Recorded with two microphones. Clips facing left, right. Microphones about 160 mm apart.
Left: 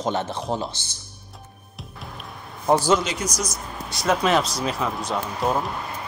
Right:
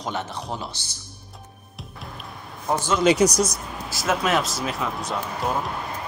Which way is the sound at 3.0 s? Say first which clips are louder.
Right 11 dB; 70° right (ahead or behind).